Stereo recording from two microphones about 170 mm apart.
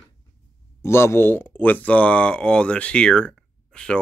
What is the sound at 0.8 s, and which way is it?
Speech, 15° left (ahead or behind).